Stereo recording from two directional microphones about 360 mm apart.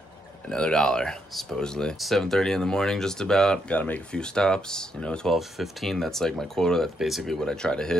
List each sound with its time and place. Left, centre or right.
0.5 s speech: centre